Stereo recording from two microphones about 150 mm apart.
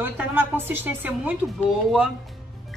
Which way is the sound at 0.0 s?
15° right (ahead or behind).